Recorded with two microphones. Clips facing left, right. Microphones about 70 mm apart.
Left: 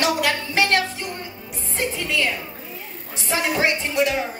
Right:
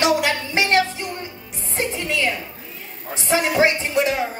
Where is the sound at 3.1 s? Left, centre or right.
Right.